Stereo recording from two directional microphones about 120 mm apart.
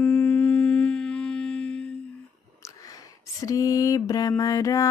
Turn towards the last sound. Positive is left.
turn(degrees=30)  # may be behind; listen again after turning